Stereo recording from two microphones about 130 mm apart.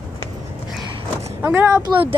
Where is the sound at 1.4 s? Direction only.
15° right (ahead or behind).